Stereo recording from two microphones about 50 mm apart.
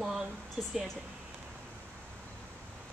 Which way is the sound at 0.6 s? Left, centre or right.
Right.